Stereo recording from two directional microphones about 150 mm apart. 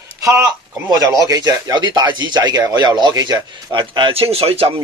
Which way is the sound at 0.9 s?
25° right (ahead or behind).